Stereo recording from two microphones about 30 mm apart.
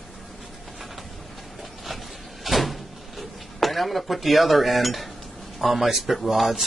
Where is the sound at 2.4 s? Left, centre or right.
Centre.